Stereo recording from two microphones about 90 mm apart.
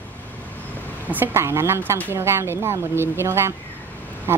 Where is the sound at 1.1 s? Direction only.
25° right (ahead or behind).